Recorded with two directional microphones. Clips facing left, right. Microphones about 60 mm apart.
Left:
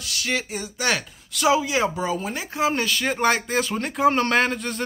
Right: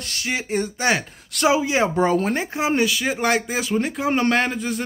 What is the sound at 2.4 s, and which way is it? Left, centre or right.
Speech, right.